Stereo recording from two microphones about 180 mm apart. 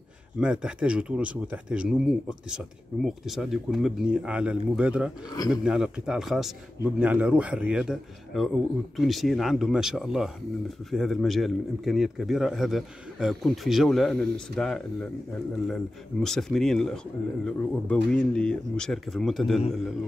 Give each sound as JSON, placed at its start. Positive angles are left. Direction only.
{"t": 0.4, "sound": "speech", "side_deg": -5}